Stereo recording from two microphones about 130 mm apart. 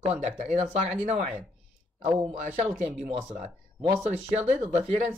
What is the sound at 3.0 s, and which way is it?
Speech, 75° right (ahead or behind).